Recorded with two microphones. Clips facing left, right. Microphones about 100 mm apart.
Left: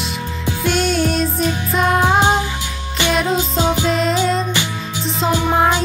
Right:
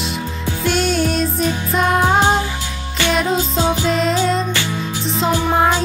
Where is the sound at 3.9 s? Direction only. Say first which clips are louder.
Even; centre (ahead or behind).